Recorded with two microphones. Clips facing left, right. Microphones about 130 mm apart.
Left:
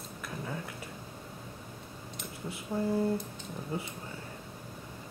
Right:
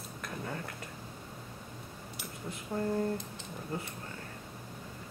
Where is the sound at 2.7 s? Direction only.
10° left (ahead or behind).